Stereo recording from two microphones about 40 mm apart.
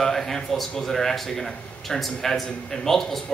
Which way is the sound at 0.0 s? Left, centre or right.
Centre.